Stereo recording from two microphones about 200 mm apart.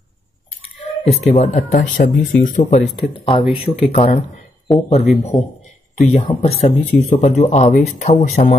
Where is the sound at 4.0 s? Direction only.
45° left (ahead or behind).